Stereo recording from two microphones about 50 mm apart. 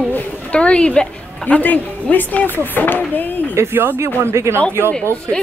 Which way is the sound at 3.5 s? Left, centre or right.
Right.